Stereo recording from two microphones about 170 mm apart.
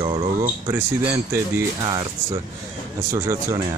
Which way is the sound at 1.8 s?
25° right (ahead or behind).